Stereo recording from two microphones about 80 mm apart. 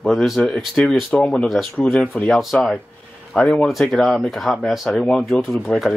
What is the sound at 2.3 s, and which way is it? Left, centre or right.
Speech, centre.